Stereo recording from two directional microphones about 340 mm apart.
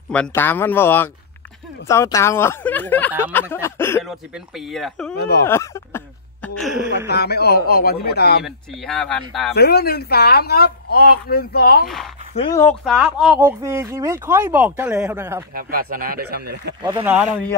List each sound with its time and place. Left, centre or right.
0.1 s speech: centre
7.1 s speech: left
8.5 s speech: centre
9.5 s speech: left
12.4 s speech: centre
15.5 s speech: right
16.8 s speech: centre